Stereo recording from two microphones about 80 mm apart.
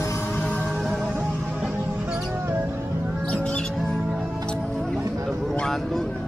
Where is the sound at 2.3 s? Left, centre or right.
Right.